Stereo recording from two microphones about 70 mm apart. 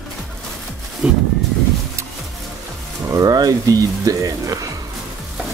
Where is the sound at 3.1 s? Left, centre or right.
Right.